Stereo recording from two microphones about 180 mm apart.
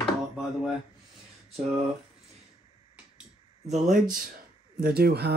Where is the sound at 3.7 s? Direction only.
40° right (ahead or behind).